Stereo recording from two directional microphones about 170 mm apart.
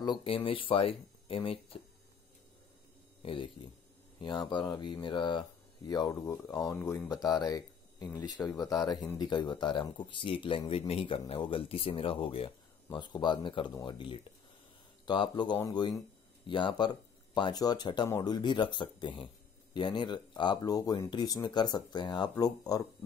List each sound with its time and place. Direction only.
0.0 s speech: 30° left (ahead or behind)
3.2 s a sound: 35° left (ahead or behind)
4.5 s speech: 25° left (ahead or behind)